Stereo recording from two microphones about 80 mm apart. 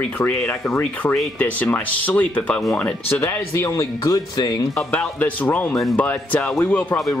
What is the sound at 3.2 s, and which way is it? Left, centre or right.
Speech, left.